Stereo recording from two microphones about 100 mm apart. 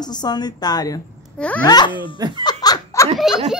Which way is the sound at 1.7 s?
50° left (ahead or behind).